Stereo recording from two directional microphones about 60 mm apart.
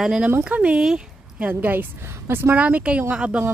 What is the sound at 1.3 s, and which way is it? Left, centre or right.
A woman's voice, right.